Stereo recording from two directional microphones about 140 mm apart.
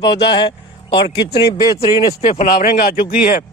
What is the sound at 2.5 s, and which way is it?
Speech, 90° left.